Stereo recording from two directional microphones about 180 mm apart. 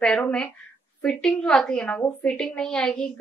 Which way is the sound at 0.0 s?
5° left (ahead or behind).